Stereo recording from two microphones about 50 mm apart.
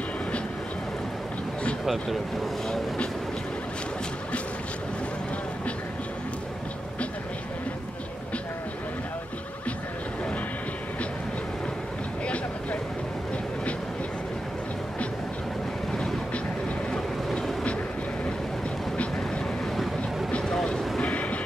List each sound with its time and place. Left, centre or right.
1.9 s speech: centre
15.9 s waves: centre
16.9 s vehicle: centre
18.9 s vehicle: centre
21.0 s vehicle: left